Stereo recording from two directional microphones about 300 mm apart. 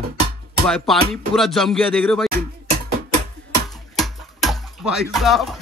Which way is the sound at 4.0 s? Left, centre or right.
Centre.